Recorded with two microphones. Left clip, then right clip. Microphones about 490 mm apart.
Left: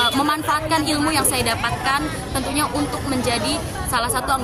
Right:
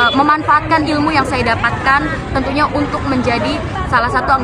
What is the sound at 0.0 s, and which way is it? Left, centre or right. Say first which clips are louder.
Speech: right 7 dB; left.